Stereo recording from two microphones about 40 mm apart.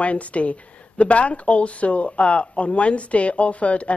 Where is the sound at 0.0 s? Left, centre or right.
Left.